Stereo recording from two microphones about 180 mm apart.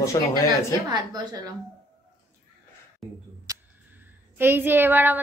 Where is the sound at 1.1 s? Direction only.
20° right (ahead or behind).